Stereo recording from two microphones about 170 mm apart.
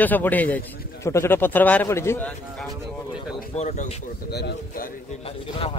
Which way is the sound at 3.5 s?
40° left (ahead or behind).